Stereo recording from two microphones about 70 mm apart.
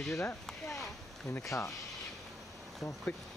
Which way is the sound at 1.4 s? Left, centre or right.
Left.